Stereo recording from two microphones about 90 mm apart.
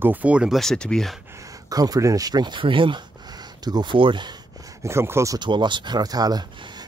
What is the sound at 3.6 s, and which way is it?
Speech, 50° right (ahead or behind).